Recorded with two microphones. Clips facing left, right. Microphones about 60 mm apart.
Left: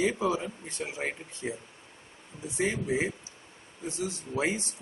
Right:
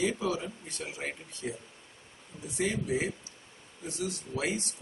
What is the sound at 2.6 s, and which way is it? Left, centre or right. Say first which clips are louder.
Speech: left 2 dB; left.